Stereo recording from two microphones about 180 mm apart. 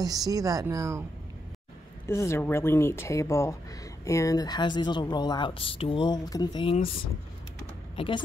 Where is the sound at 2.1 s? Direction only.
15° left (ahead or behind).